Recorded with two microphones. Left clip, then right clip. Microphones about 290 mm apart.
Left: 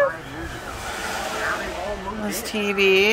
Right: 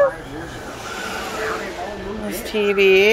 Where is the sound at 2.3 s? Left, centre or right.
Centre.